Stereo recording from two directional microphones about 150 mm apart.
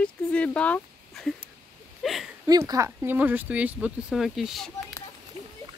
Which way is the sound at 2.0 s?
Centre (ahead or behind).